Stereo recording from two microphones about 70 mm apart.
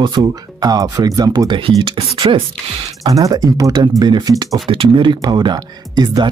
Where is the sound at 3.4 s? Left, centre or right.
Right.